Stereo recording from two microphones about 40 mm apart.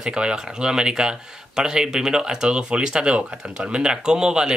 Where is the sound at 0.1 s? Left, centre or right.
Centre.